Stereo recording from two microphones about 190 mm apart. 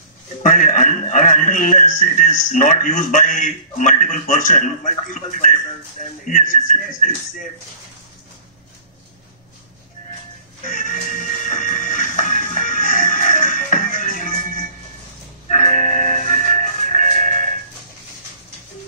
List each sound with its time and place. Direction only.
0.4 s a man's voice: 45° left (ahead or behind)
10.6 s music: 45° left (ahead or behind)
15.4 s music: 45° left (ahead or behind)